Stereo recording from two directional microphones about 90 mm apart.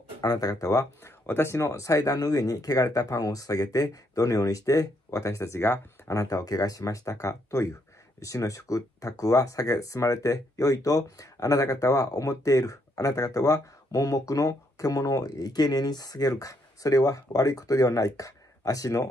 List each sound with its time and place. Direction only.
0.2 s speech: 45° left (ahead or behind)
1.2 s speech: 25° left (ahead or behind)